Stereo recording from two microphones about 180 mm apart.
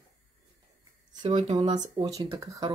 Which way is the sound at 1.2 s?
30° right (ahead or behind).